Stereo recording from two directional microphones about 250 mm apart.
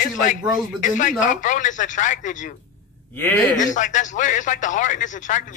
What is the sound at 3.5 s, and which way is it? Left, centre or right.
A man's voice, left.